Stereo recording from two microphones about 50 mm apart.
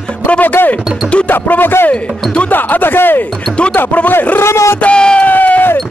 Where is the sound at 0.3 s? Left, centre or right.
Left.